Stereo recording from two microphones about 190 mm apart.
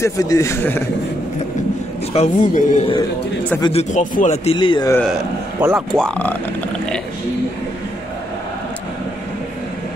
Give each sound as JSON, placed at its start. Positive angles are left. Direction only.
{"t": 0.0, "sound": "a man's voice", "side_deg": 15}
{"t": 2.1, "sound": "a man's voice", "side_deg": 35}
{"t": 5.6, "sound": "speech", "side_deg": -10}
{"t": 5.9, "sound": "speech", "side_deg": 5}